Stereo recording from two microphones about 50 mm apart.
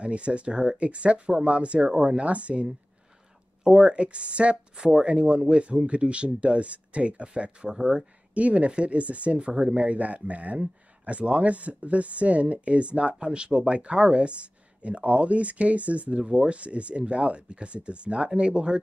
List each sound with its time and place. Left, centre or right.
0.0 s speech: right
7.7 s speech: centre
8.4 s speech: right